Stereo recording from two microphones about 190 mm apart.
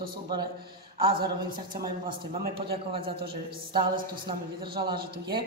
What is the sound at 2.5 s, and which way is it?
A man's voice, 30° right (ahead or behind).